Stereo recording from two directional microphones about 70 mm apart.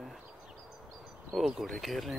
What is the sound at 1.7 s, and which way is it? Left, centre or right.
Speech, centre.